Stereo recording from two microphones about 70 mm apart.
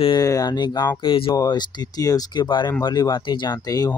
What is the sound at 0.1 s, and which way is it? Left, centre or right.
Speech, left.